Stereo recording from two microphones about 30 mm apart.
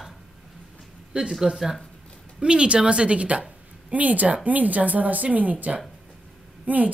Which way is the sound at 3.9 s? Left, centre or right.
Right.